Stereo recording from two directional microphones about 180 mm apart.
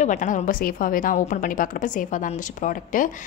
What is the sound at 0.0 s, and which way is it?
A woman's voice, 45° left (ahead or behind).